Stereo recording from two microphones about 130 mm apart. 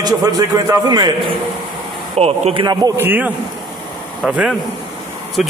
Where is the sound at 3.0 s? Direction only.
15° right (ahead or behind).